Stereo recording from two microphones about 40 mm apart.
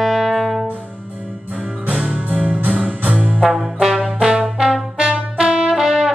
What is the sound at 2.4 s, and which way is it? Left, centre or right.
Music, right.